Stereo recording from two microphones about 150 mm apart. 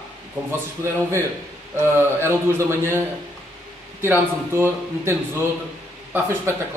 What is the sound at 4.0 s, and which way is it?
Speech, 15° right (ahead or behind).